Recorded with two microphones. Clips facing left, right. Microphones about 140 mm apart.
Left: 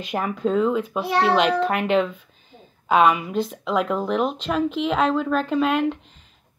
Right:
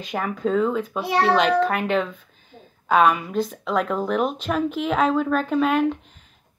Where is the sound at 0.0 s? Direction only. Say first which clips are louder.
Left 1 dB; 5° left (ahead or behind).